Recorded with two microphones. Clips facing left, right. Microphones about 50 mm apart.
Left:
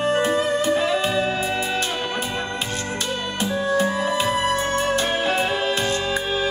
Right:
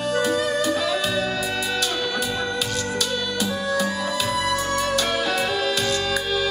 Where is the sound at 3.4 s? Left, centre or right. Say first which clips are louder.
Left 4 dB; left.